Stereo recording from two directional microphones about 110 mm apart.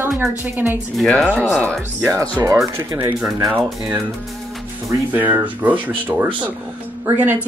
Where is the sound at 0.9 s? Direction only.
5° left (ahead or behind).